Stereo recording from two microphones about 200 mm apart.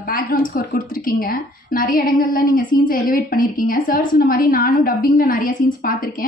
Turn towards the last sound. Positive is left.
turn(degrees=45)  # may be behind; listen again after turning